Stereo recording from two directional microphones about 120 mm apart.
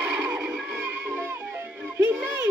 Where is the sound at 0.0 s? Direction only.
15° right (ahead or behind).